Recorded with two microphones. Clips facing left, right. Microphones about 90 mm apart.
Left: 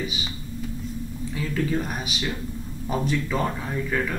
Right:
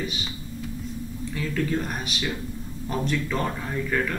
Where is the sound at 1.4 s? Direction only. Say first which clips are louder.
Left 1 dB; 5° left (ahead or behind).